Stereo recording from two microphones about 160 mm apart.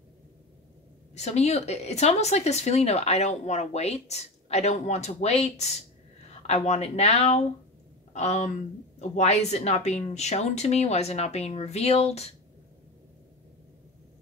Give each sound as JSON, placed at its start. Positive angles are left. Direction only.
{"t": 1.1, "sound": "speech", "side_deg": 45}